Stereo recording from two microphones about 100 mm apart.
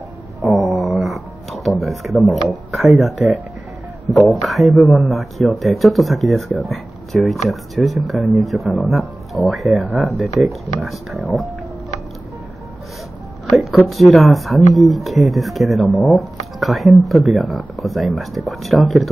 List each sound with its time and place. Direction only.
0.4 s a sound: centre (ahead or behind)
0.7 s dog: centre (ahead or behind)
2.2 s speech: centre (ahead or behind)
13.5 s speech: centre (ahead or behind)